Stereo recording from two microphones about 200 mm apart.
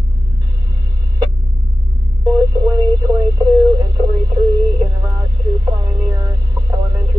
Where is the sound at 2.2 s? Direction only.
15° right (ahead or behind).